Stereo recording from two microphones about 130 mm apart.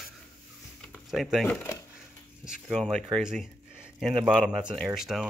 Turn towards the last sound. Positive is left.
turn(degrees=0)  # may be behind; listen again after turning